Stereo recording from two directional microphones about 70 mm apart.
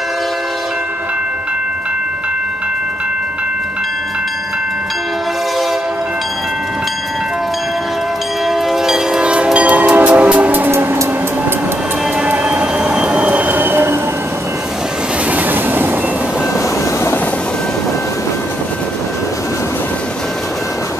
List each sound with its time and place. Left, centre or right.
8.5 s train: centre; by 10.7 s right
10.7 s music: right
12.2 s train: centre; by 13.9 s right
15.3 s train: right
16.5 s vehicle: left